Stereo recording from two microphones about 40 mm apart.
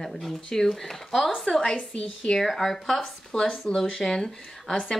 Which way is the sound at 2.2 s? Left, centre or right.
Centre.